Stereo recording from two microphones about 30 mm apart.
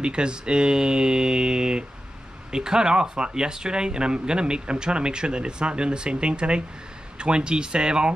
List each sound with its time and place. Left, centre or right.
0.0 s speech: right